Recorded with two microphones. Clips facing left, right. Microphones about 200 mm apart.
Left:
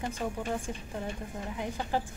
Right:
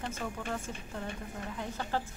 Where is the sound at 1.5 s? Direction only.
15° left (ahead or behind).